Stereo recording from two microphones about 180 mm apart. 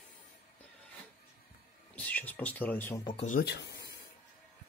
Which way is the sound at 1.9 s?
5° left (ahead or behind).